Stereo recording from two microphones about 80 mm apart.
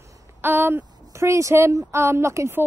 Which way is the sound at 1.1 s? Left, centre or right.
Right.